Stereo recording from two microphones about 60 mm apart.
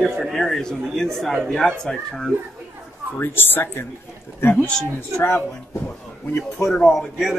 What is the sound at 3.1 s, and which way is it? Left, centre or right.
Speech, left.